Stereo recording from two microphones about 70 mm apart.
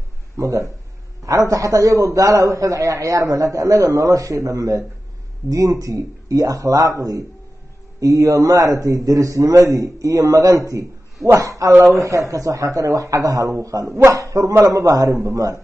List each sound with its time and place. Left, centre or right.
0.4 s a man's voice: right